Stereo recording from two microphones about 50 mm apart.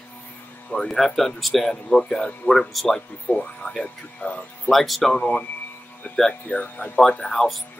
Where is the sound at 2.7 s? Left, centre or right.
Centre.